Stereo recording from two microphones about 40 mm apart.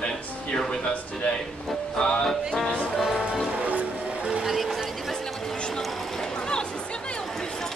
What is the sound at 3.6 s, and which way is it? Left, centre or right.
Music, right.